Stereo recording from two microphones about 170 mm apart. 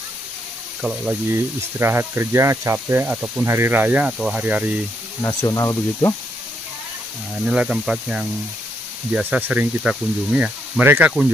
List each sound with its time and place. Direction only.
0.8 s speech: 10° right (ahead or behind)
5.2 s speech: 15° left (ahead or behind)
7.4 s speech: 5° right (ahead or behind)